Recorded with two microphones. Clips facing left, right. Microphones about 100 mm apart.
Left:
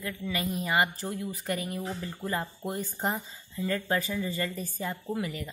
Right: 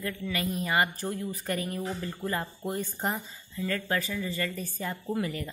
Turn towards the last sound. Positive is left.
turn(degrees=10)  # may be behind; listen again after turning